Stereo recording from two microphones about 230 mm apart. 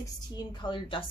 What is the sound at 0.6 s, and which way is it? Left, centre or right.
Speech, left.